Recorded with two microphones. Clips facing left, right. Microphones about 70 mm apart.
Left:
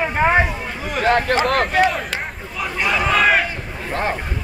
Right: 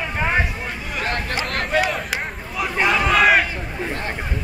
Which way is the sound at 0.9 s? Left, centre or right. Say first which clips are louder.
Left 9 dB; left.